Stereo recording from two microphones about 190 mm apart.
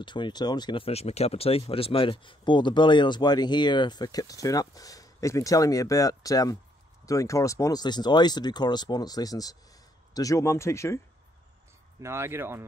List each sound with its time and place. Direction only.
0.0 s speech: 25° left (ahead or behind)
12.0 s speech: 15° right (ahead or behind)